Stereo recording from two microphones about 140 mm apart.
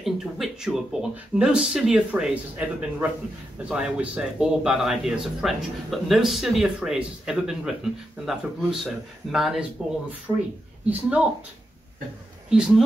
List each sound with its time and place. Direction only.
0.0 s a man's voice: 5° right (ahead or behind)
10.3 s speech: 15° right (ahead or behind)
12.4 s speech: 5° right (ahead or behind)